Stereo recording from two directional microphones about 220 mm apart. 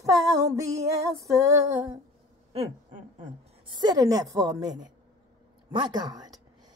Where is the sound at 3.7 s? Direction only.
20° right (ahead or behind).